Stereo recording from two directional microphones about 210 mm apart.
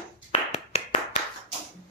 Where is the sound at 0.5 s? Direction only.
30° left (ahead or behind).